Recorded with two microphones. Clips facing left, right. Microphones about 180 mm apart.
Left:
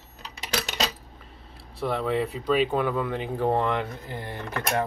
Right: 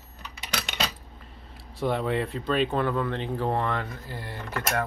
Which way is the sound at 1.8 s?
Centre (ahead or behind).